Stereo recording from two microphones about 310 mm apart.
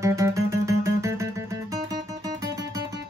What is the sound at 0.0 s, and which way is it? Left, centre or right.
Music, centre.